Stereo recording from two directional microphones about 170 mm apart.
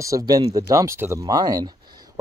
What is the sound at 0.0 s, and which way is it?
Speech, 20° right (ahead or behind).